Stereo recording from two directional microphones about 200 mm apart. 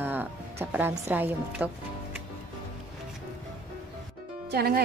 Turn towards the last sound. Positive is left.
turn(degrees=-55)  # may be behind; listen again after turning